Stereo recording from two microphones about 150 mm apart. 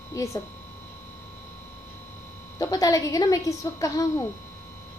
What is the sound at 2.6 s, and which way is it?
A woman's voice, 25° left (ahead or behind).